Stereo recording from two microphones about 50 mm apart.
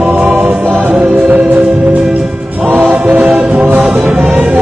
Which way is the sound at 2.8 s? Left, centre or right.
Right.